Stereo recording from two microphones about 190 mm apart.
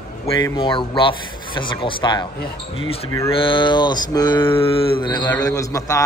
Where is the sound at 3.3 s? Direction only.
25° left (ahead or behind).